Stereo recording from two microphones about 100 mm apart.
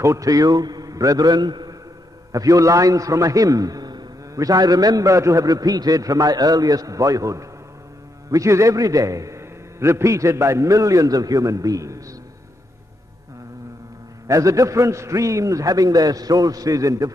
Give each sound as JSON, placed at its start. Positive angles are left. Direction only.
{"t": 0.0, "sound": "a man's voice", "side_deg": -35}
{"t": 2.3, "sound": "a man's voice", "side_deg": -35}
{"t": 14.2, "sound": "a man's voice", "side_deg": -35}